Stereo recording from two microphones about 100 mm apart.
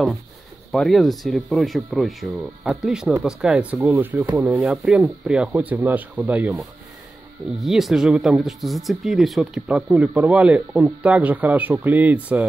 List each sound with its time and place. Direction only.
0.7 s speech: centre (ahead or behind); by 6.5 s 15° right (ahead or behind)
7.5 s speech: centre (ahead or behind)